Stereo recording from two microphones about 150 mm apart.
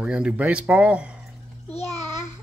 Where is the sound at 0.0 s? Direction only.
10° right (ahead or behind).